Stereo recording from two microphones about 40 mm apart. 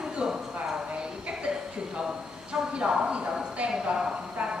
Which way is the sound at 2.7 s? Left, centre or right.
Right.